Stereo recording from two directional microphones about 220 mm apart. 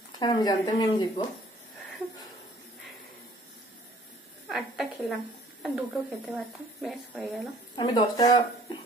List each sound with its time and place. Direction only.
0.2 s speech: 20° left (ahead or behind)
4.5 s speech: centre (ahead or behind)
7.7 s speech: 20° left (ahead or behind)